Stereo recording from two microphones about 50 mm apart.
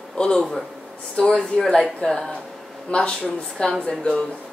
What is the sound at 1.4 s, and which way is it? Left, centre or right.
Speech, centre.